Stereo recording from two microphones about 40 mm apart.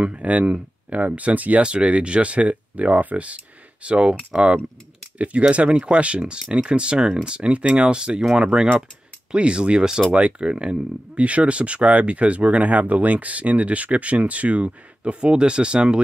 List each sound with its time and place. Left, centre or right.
0.0 s speech: right
1.6 s speech: right